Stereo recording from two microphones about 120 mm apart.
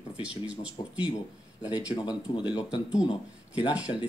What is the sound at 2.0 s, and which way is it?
Speech, 40° left (ahead or behind).